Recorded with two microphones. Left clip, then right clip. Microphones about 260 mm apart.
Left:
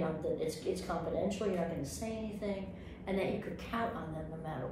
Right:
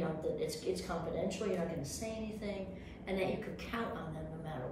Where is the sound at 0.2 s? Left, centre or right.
Centre.